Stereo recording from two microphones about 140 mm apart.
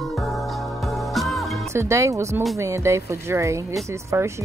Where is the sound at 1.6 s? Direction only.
20° right (ahead or behind).